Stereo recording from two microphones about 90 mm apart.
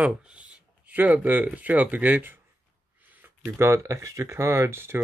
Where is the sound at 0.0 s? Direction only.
10° right (ahead or behind).